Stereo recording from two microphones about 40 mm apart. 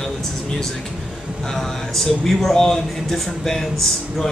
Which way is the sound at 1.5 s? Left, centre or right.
Centre.